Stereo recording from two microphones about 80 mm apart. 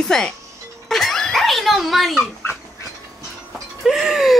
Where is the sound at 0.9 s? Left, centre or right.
Centre.